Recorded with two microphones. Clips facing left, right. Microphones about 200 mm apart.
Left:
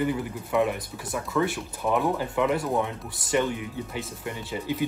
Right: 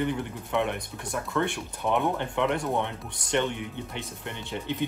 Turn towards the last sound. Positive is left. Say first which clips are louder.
# left 2 dB
turn(degrees=5)  # may be behind; listen again after turning